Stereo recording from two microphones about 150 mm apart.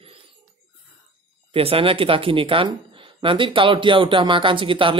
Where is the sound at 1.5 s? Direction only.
40° right (ahead or behind).